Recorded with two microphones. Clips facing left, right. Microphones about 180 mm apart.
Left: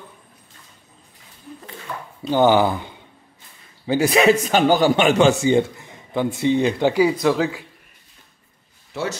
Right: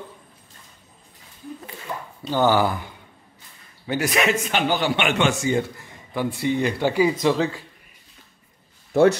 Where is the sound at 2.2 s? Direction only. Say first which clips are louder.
Left 4 dB; 20° left (ahead or behind).